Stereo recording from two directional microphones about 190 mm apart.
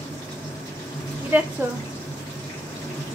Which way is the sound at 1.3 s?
10° right (ahead or behind).